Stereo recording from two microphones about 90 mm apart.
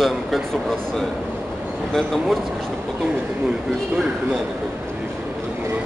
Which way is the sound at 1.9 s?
5° left (ahead or behind).